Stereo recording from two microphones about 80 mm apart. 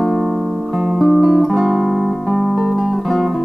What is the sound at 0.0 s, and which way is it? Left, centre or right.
Guitar, centre.